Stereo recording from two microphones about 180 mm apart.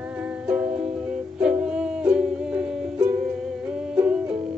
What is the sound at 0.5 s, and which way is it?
Music, 5° right (ahead or behind).